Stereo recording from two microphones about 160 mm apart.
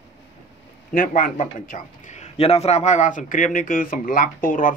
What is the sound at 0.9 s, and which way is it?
Speech, 60° left (ahead or behind).